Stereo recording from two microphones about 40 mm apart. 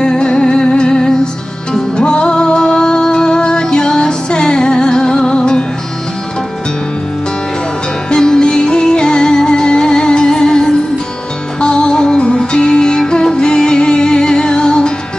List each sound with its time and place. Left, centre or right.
0.0 s music: left
8.1 s music: centre